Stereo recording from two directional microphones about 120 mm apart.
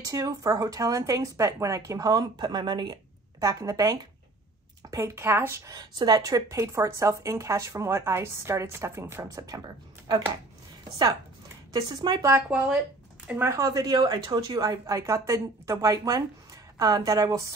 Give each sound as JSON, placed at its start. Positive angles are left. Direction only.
{"t": 0.0, "sound": "speech", "side_deg": -30}
{"t": 5.7, "sound": "speech", "side_deg": -35}
{"t": 11.7, "sound": "speech", "side_deg": -35}
{"t": 12.2, "sound": "speech", "side_deg": -25}
{"t": 12.4, "sound": "speech", "side_deg": -10}
{"t": 13.3, "sound": "speech", "side_deg": -25}